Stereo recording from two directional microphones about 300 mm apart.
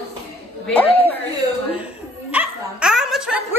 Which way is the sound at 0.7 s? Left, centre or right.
Centre.